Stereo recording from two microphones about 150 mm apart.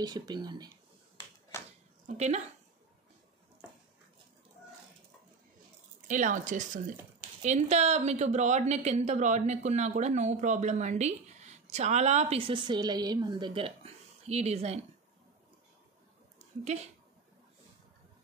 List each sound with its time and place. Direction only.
0.0 s speech: 30° right (ahead or behind)
1.5 s a sound: 15° left (ahead or behind)
2.0 s a woman's voice: 50° right (ahead or behind)
6.0 s speech: 55° right (ahead or behind)
7.2 s a woman's voice: 50° right (ahead or behind)
16.3 s a sound: 45° right (ahead or behind)